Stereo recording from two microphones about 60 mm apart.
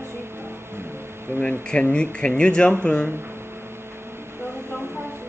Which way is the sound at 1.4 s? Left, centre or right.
Centre.